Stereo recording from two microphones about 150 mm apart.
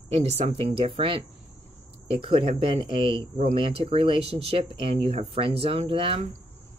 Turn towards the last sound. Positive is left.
turn(degrees=-35)  # may be behind; listen again after turning